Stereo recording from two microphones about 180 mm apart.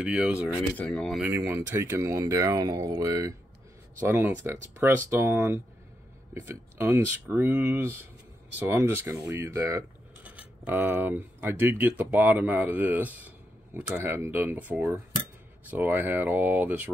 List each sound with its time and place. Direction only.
0.0 s speech: 5° right (ahead or behind)
0.6 s speech: 5° left (ahead or behind)
1.2 s coin: 15° right (ahead or behind)
3.0 s speech: 20° right (ahead or behind)
4.0 s coin: 10° right (ahead or behind)